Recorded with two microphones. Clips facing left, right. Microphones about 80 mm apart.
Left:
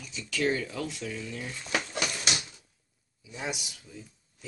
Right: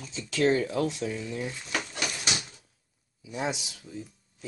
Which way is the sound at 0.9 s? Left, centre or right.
Right.